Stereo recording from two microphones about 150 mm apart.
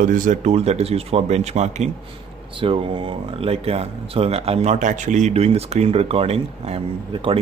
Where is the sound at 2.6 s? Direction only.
35° right (ahead or behind).